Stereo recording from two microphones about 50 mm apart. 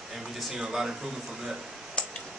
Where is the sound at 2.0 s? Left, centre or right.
Centre.